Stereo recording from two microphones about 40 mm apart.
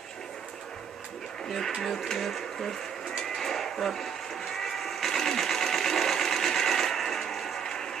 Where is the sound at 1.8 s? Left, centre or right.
Centre.